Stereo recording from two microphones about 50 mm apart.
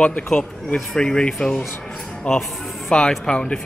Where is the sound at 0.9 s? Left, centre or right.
Centre.